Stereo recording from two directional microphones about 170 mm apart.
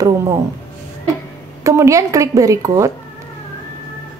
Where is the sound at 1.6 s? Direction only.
20° right (ahead or behind).